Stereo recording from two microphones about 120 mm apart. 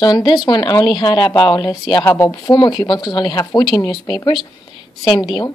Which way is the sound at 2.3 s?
35° left (ahead or behind).